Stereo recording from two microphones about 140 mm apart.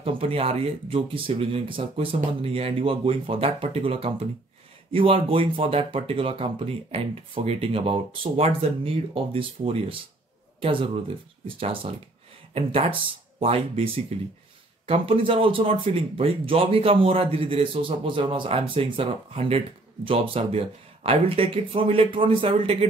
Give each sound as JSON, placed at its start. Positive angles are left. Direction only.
{"t": 0.0, "sound": "speech", "side_deg": -40}
{"t": 13.4, "sound": "speech", "side_deg": -40}